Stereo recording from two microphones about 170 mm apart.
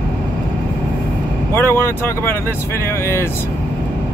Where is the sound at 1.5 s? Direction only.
15° left (ahead or behind).